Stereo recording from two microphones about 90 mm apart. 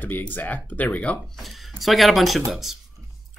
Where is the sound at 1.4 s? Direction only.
Centre (ahead or behind).